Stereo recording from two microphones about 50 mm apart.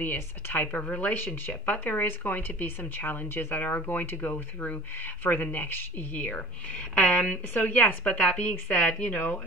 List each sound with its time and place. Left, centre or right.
0.0 s speech: left
1.1 s speech: left
4.2 s speech: left
4.9 s speech: left
9.2 s speech: left